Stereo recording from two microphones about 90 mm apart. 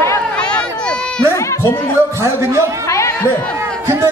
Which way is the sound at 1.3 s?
35° left (ahead or behind).